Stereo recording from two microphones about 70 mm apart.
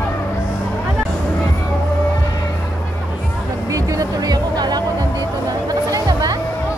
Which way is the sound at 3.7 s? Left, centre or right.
Right.